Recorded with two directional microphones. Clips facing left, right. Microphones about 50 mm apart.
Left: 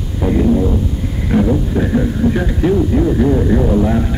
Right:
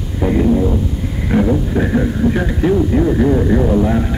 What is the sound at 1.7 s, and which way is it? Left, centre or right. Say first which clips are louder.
Speech: even; right.